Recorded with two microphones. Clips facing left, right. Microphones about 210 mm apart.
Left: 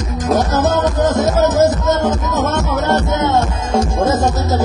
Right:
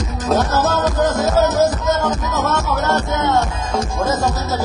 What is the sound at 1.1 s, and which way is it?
Music, 20° left (ahead or behind).